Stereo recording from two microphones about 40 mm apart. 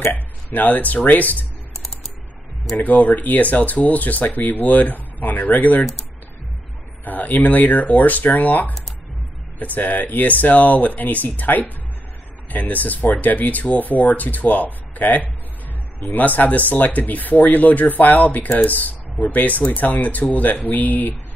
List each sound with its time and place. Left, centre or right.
0.1 s speech: left
2.8 s speech: left
7.1 s speech: left